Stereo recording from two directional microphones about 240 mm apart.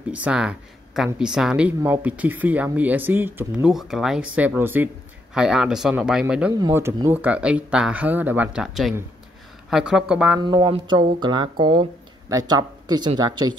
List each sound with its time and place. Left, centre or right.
0.1 s speech: centre
10.4 s speech: centre